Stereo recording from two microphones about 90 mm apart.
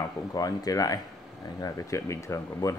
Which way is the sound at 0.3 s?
45° left (ahead or behind).